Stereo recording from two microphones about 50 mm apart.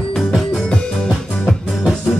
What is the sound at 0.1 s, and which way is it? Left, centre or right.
Music, centre.